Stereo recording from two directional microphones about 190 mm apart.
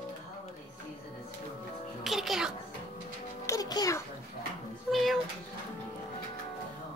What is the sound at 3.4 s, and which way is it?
Music, 20° left (ahead or behind).